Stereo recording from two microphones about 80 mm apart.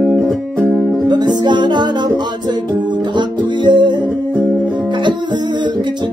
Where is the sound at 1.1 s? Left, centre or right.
Right.